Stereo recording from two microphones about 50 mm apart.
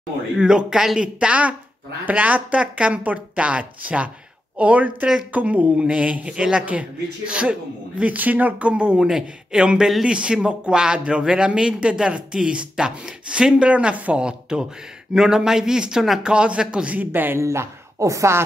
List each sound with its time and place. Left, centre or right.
0.4 s speech: centre
2.0 s speech: right
8.0 s speech: right
14.2 s a man's voice: centre
16.9 s speech: right
17.4 s speech: right